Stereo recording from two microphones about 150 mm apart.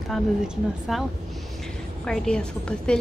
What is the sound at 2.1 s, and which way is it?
Speech, 5° left (ahead or behind).